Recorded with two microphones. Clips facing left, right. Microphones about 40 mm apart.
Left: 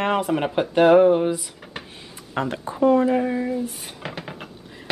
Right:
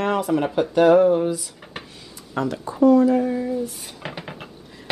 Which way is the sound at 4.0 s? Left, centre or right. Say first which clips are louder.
Even; centre.